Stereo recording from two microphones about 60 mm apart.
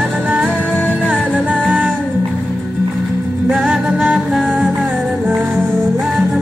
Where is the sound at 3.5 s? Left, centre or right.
Right.